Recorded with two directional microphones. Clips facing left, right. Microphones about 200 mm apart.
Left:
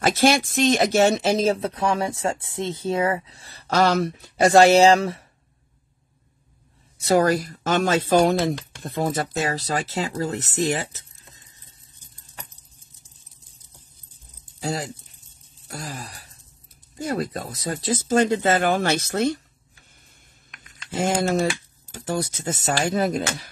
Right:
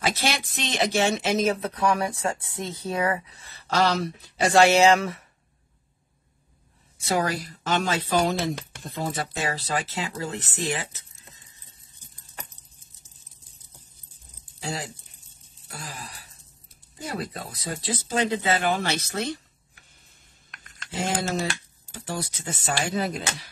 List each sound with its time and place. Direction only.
0.0 s speech: 50° left (ahead or behind); by 5.2 s 30° left (ahead or behind)
7.1 s speech: 40° left (ahead or behind)
14.6 s speech: 40° left (ahead or behind)
20.5 s typing: 5° left (ahead or behind)
20.9 s speech: 50° left (ahead or behind)